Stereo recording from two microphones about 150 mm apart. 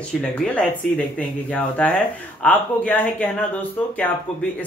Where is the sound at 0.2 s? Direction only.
5° left (ahead or behind).